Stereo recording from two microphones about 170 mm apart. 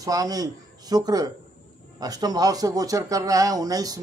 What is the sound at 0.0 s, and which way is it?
Speech, 20° right (ahead or behind).